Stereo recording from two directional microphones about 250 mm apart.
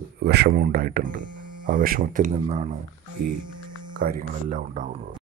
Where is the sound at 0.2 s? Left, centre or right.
Right.